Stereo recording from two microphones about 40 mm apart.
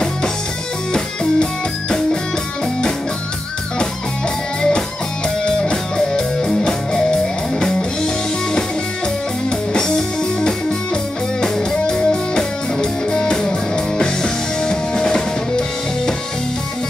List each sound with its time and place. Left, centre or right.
0.9 s music: centre
4.6 s music: centre
9.8 s music: centre
11.9 s music: centre